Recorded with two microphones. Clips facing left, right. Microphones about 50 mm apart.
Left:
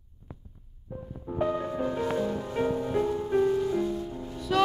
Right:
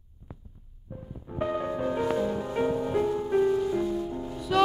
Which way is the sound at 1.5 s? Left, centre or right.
Centre.